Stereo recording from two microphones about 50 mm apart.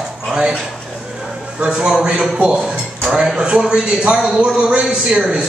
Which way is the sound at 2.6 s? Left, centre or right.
Centre.